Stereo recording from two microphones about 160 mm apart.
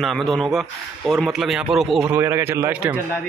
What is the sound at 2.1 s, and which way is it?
Speech, 15° right (ahead or behind).